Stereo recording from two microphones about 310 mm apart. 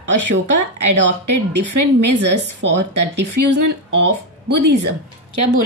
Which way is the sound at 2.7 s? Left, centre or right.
Right.